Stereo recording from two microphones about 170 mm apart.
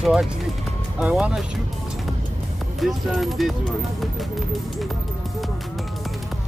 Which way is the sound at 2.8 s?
Centre (ahead or behind).